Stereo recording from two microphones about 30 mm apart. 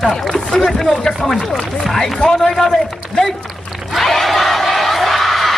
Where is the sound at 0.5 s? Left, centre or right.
Centre.